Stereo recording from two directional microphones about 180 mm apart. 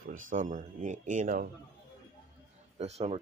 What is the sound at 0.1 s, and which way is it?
Speech, 45° right (ahead or behind).